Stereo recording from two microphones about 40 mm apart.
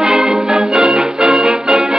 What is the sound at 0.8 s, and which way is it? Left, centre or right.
Music, right.